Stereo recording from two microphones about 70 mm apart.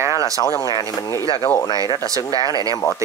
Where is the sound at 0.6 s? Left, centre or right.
Left.